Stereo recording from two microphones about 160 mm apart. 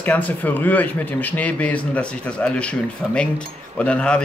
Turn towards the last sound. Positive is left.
turn(degrees=5)  # may be behind; listen again after turning